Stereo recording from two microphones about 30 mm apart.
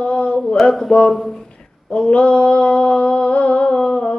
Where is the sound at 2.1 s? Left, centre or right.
Left.